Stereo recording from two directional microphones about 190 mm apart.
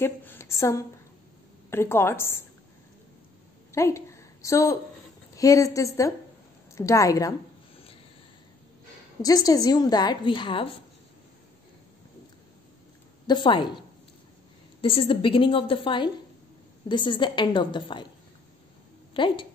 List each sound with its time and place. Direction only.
0.0 s a woman's voice: 10° left (ahead or behind)
3.7 s a woman's voice: 15° left (ahead or behind)
9.2 s a woman's voice: 20° left (ahead or behind)
13.3 s a woman's voice: 25° left (ahead or behind)
14.8 s a woman's voice: 30° left (ahead or behind)
19.1 s a woman's voice: 25° left (ahead or behind)